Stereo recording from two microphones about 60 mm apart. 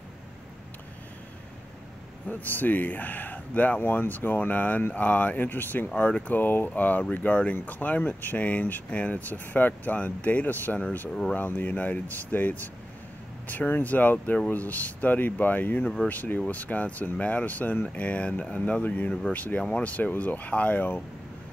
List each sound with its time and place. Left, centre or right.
2.2 s speech: left
5.9 s speech: left